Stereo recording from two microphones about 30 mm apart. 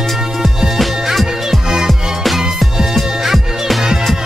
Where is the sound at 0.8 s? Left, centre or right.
Centre.